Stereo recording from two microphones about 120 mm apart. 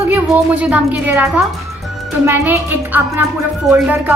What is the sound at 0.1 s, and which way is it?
A woman's voice, 15° right (ahead or behind).